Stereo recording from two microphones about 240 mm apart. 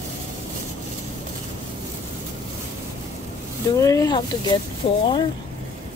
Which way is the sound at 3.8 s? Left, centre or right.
Centre.